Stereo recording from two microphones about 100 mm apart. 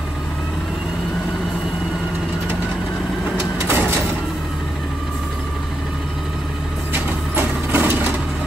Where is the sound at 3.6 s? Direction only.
20° right (ahead or behind).